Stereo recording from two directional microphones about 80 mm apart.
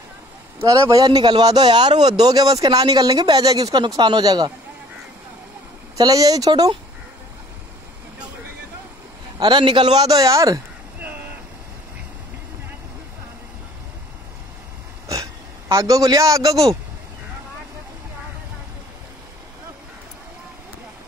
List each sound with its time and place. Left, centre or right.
0.6 s a man's voice: right
5.9 s a man's voice: right
9.4 s a man's voice: right
11.0 s vehicle: right
15.7 s a man's voice: right